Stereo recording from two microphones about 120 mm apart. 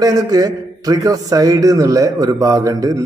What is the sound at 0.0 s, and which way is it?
A man's voice, 30° right (ahead or behind).